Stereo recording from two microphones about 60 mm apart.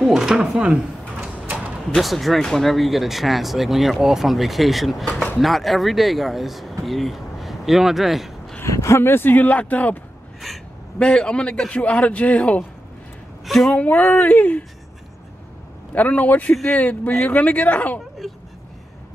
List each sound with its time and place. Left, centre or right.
0.0 s speech: centre
2.0 s speech: centre
8.6 s speech: left
11.0 s a man's voice: centre
13.5 s speech: centre
13.8 s a man's voice: left
15.9 s a man's voice: left